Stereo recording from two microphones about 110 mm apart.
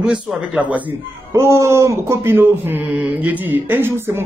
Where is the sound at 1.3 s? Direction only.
25° right (ahead or behind).